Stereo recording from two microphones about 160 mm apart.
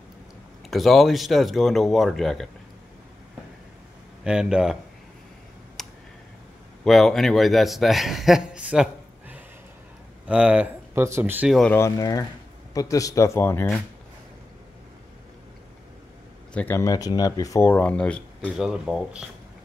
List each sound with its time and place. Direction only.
0.7 s a man's voice: centre (ahead or behind)
4.2 s a man's voice: 5° right (ahead or behind)
5.8 s a sound: 5° left (ahead or behind)
6.8 s a man's voice: centre (ahead or behind)
10.2 s speech: 5° right (ahead or behind)
11.7 s speech: 20° left (ahead or behind)
16.5 s speech: 15° left (ahead or behind)
18.7 s a man's voice: 5° right (ahead or behind)